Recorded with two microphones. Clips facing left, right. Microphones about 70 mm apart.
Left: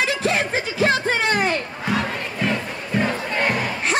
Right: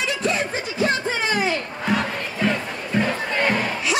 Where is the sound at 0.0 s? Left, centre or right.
Left.